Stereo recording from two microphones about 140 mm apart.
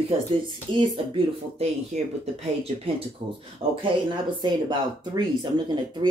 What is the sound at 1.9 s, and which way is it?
Speech, 55° right (ahead or behind).